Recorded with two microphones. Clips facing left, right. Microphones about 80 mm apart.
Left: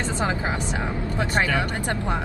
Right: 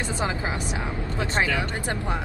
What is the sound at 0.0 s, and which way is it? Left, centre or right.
Speech, left.